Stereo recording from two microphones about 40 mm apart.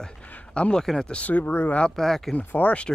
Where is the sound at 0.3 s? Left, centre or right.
Left.